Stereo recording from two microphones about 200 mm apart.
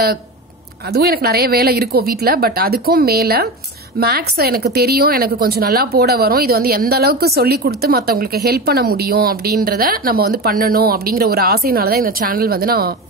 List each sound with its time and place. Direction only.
0.9 s a woman's voice: 50° right (ahead or behind)